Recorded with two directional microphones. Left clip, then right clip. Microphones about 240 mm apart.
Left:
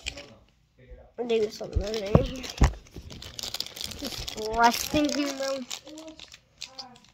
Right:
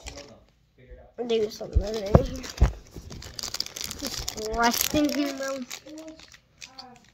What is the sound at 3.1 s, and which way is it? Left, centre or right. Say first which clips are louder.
Computer keyboard: even; right.